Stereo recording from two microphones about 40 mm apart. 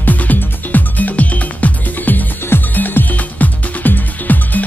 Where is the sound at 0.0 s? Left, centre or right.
Left.